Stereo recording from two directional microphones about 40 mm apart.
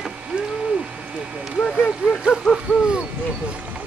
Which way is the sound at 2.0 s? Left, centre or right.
Right.